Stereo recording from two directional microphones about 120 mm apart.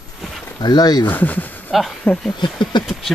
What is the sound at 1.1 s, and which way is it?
Speech, 15° left (ahead or behind).